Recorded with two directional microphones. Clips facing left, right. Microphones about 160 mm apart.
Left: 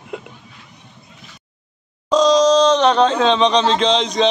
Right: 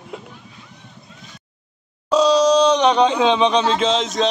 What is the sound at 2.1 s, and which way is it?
Speech, 10° right (ahead or behind).